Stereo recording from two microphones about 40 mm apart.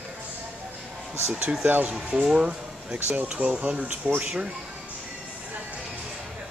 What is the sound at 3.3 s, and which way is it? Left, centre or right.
Speech, right.